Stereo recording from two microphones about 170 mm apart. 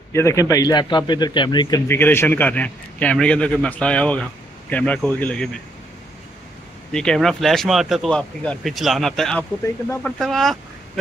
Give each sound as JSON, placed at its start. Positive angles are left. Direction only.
{"t": 0.1, "sound": "a man's voice", "side_deg": 15}
{"t": 1.9, "sound": "a man's voice", "side_deg": 15}
{"t": 6.9, "sound": "speech", "side_deg": 5}